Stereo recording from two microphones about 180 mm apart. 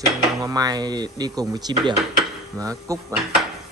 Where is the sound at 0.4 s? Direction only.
20° right (ahead or behind).